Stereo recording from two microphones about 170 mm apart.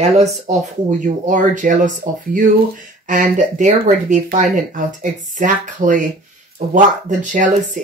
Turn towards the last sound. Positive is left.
turn(degrees=-50)  # may be behind; listen again after turning